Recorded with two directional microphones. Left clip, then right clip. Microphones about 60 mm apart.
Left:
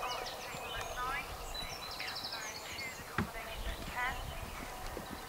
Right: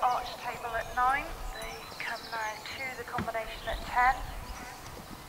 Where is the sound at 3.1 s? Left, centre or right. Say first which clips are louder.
Right 4 dB; centre.